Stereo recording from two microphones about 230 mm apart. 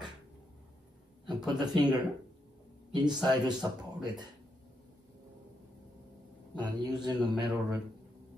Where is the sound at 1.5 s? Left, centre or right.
Centre.